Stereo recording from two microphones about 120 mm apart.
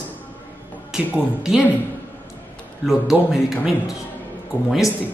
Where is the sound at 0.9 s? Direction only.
5° right (ahead or behind).